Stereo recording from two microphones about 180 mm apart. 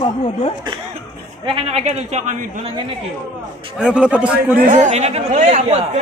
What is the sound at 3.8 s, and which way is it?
Speech, 5° right (ahead or behind).